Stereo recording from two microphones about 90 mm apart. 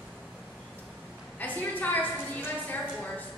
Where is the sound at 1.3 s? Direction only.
20° left (ahead or behind).